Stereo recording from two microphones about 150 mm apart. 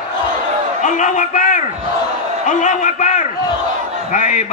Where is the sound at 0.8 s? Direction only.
55° left (ahead or behind).